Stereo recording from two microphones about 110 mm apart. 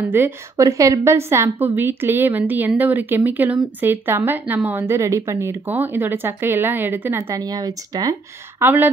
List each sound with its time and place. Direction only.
0.1 s a woman's voice: 25° right (ahead or behind)
7.3 s speech: 35° right (ahead or behind)
8.5 s a woman's voice: 20° right (ahead or behind)